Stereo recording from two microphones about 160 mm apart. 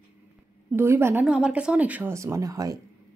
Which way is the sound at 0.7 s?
15° right (ahead or behind).